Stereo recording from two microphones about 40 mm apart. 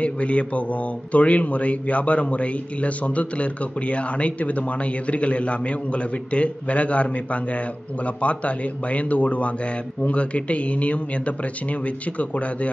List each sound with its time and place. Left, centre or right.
0.0 s a man's voice: left
8.2 s a man's voice: left